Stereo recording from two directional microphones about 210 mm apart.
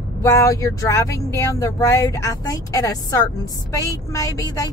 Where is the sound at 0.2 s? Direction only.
15° left (ahead or behind).